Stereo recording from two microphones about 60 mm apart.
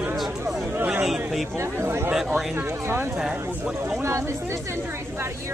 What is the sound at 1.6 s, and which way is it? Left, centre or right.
Speech, right.